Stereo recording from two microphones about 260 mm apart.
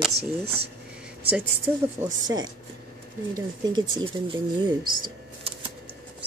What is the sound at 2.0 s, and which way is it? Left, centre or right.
Speech, centre.